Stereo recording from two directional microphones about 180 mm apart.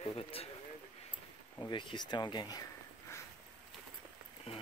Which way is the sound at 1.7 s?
25° left (ahead or behind).